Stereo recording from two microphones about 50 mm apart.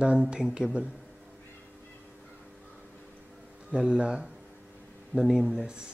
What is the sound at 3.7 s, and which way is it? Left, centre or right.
Speech, centre.